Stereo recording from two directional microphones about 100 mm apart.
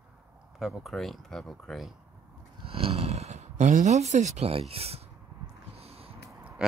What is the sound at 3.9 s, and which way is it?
Speech, 90° right.